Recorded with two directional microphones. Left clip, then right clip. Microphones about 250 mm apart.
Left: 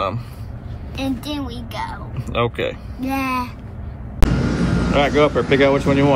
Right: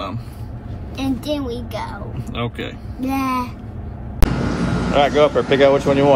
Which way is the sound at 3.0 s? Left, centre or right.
Centre.